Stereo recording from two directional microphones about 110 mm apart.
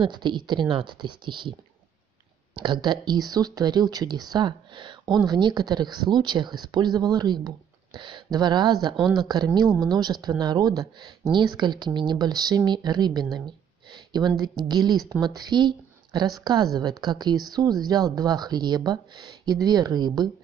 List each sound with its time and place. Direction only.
0.0 s speech: 45° right (ahead or behind)
2.5 s speech: 45° right (ahead or behind)